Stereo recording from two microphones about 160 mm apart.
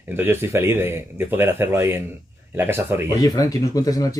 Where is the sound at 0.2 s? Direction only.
15° right (ahead or behind).